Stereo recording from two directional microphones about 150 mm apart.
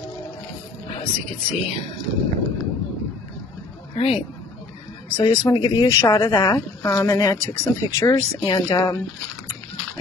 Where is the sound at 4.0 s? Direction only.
35° left (ahead or behind).